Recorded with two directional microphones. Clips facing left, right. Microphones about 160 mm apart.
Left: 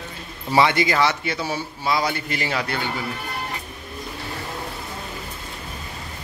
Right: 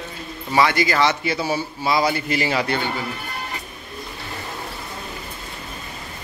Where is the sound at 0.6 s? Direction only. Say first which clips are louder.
Even; 20° left (ahead or behind).